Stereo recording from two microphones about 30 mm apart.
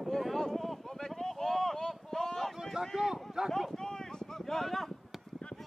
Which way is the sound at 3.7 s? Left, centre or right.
Centre.